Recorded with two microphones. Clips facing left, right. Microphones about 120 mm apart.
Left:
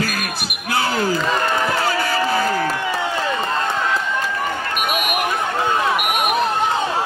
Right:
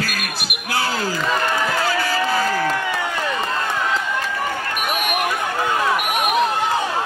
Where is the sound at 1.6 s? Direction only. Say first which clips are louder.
Left 1 dB; 20° left (ahead or behind).